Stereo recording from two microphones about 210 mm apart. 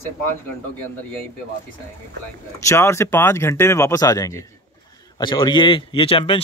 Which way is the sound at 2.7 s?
10° left (ahead or behind).